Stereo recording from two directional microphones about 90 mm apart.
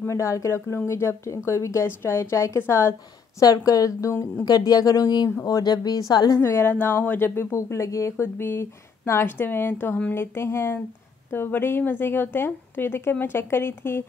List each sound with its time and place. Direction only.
0.0 s speech: 35° left (ahead or behind)
6.3 s speech: 30° left (ahead or behind)